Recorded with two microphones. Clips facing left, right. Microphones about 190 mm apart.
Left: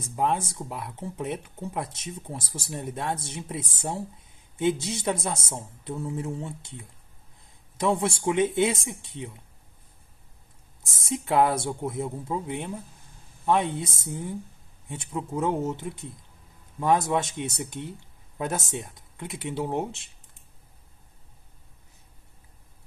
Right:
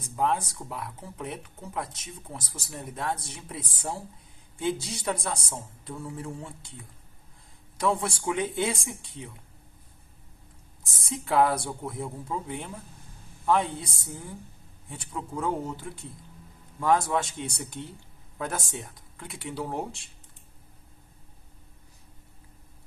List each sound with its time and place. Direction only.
0.1 s speech: 25° left (ahead or behind)
11.0 s speech: 25° left (ahead or behind)